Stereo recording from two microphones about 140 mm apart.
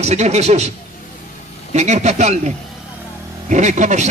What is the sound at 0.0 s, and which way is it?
A man's voice, 50° right (ahead or behind).